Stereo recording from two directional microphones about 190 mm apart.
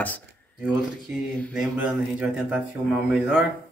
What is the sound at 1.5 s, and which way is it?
Speech, 5° right (ahead or behind).